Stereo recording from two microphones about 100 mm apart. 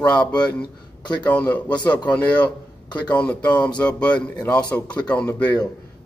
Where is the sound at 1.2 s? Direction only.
15° left (ahead or behind).